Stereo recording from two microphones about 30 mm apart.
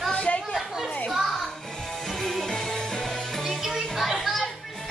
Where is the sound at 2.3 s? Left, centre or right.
Centre.